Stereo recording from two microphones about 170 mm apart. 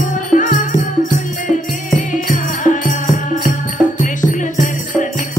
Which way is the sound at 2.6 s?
50° left (ahead or behind).